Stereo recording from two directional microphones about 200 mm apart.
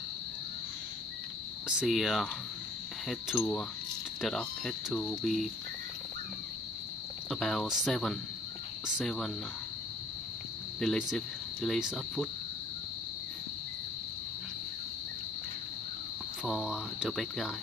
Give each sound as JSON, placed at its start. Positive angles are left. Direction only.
{"t": 1.7, "sound": "speech", "side_deg": 0}
{"t": 3.3, "sound": "speech", "side_deg": 5}
{"t": 7.2, "sound": "speech", "side_deg": 0}
{"t": 10.8, "sound": "speech", "side_deg": 0}
{"t": 16.4, "sound": "speech", "side_deg": 0}